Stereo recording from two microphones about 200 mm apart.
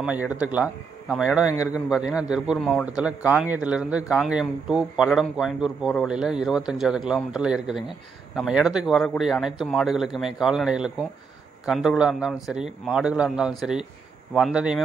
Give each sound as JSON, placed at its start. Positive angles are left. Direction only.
{"t": 0.0, "sound": "a man's voice", "side_deg": -5}
{"t": 1.5, "sound": "a man's voice", "side_deg": 15}
{"t": 1.9, "sound": "a man's voice", "side_deg": -5}